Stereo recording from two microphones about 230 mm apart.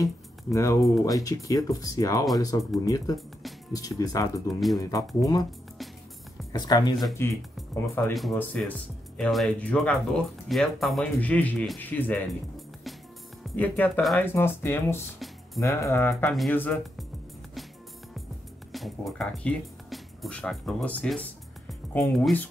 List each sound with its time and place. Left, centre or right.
0.0 s speech: centre
4.5 s speech: centre
4.7 s speech: centre
6.5 s speech: centre
8.1 s speech: centre
18.7 s speech: centre